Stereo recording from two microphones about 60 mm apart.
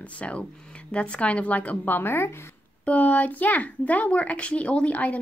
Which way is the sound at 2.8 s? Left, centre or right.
Left.